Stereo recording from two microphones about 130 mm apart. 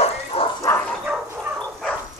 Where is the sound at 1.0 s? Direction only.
10° right (ahead or behind).